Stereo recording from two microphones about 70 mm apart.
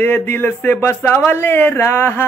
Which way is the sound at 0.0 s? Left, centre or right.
Left.